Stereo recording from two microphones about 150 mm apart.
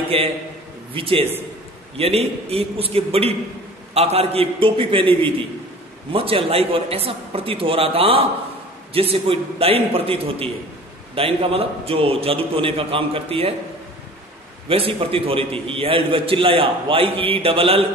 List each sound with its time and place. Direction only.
0.1 s a man's voice: 40° right (ahead or behind)
14.7 s a man's voice: 40° right (ahead or behind)